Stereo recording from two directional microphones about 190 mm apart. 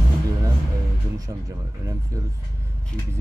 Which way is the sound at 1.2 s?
15° right (ahead or behind).